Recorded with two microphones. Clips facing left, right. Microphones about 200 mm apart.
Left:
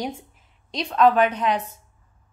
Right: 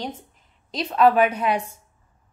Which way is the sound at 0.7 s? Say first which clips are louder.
Even; 5° right (ahead or behind).